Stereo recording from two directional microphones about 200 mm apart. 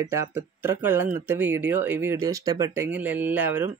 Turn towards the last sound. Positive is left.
turn(degrees=-10)  # may be behind; listen again after turning